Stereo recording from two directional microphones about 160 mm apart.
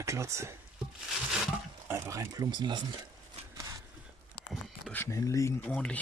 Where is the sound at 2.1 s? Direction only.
20° right (ahead or behind).